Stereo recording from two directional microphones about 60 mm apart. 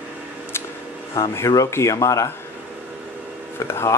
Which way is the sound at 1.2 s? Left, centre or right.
Left.